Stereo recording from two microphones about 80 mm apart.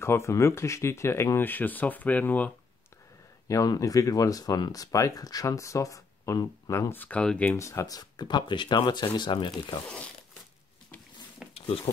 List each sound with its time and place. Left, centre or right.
0.0 s speech: left; by 2.5 s centre
3.4 s speech: left
6.9 s speech: centre
7.5 s speech: left
11.4 s a sound: centre